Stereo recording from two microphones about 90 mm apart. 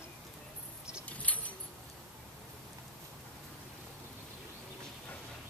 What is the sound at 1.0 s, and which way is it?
Keys jangling, 15° left (ahead or behind).